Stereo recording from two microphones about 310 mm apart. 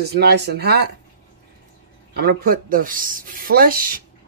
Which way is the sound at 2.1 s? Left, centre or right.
Right.